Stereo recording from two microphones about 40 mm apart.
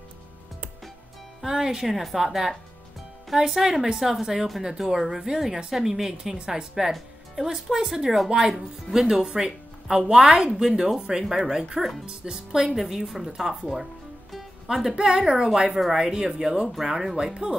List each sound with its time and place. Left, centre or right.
1.4 s speech: centre
1.9 s speech: centre
15.0 s speech: centre
17.3 s speech: right